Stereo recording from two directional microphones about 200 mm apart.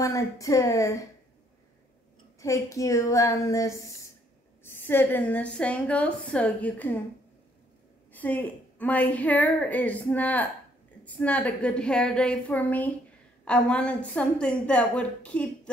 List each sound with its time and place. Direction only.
0.0 s a woman's voice: 15° left (ahead or behind)
2.4 s a woman's voice: 15° left (ahead or behind)
8.1 s a woman's voice: 10° left (ahead or behind)